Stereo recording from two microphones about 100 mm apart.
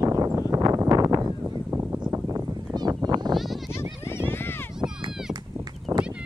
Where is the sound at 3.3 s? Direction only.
Centre (ahead or behind).